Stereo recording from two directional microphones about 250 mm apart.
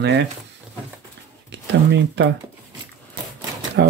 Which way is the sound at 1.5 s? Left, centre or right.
Right.